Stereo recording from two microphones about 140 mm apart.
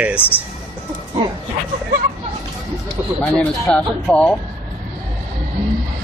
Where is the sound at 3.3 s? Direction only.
5° left (ahead or behind).